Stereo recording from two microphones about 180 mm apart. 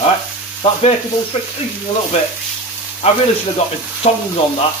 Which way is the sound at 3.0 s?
35° left (ahead or behind).